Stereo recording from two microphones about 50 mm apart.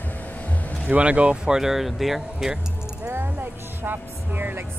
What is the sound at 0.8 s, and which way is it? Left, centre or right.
Speech, right.